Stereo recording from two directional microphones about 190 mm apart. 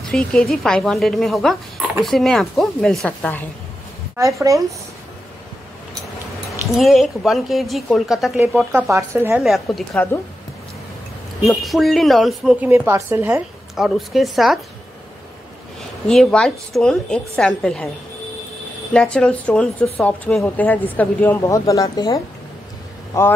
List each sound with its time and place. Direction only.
0.0 s speech: 5° left (ahead or behind)
4.2 s speech: 15° right (ahead or behind)
6.8 s speech: centre (ahead or behind)
9.4 s speech: centre (ahead or behind)
11.4 s speech: centre (ahead or behind)
16.1 s speech: 5° left (ahead or behind)
18.9 s a woman's voice: 5° left (ahead or behind)